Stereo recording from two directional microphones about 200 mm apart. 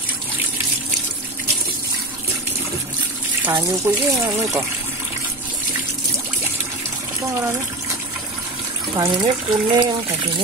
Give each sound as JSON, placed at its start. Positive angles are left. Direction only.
{"t": 3.4, "sound": "speech", "side_deg": -10}
{"t": 8.9, "sound": "speech", "side_deg": -20}